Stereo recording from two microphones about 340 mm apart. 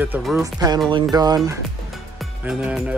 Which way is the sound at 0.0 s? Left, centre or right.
Centre.